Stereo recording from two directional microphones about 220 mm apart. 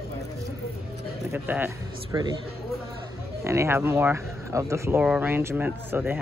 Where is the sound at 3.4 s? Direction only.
10° right (ahead or behind).